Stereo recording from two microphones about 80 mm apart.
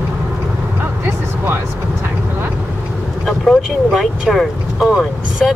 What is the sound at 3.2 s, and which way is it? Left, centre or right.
Vehicle, centre.